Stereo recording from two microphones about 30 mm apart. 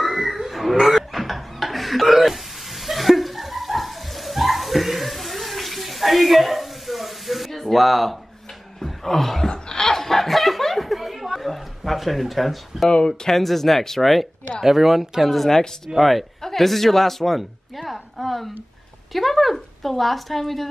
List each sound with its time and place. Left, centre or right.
0.0 s a sound: centre
8.8 s wail: centre
9.5 s chuckle: left; by 11.0 s centre
11.0 s a sound: centre
12.9 s speech: left
13.3 s speech: centre
14.6 s speech: centre
15.2 s a woman's voice: centre
17.4 s a sound: centre
19.1 s a woman's voice: centre